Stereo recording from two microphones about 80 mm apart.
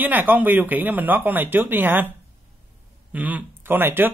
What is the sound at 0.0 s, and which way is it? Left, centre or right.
A man's voice, right.